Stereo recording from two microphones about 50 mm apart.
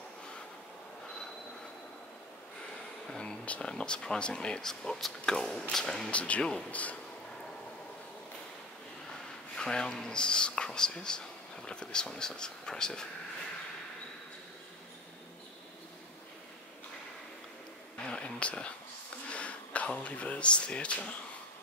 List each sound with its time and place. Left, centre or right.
3.1 s a sound: centre
3.4 s speech: left
6.1 s speech: left
9.6 s speech: centre
17.9 s a sound: centre
19.3 s speech: left